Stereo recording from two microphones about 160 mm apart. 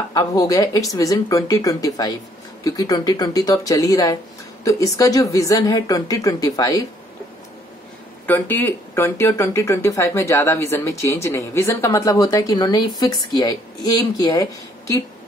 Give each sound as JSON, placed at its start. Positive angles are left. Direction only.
{"t": 0.1, "sound": "a woman's voice", "side_deg": 20}
{"t": 8.3, "sound": "speech", "side_deg": 10}